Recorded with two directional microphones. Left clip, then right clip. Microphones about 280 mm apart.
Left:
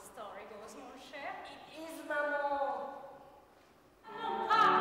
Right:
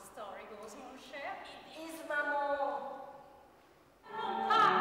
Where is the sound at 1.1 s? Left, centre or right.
Centre.